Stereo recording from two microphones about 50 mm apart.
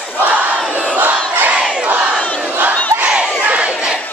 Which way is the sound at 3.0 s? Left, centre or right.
Centre.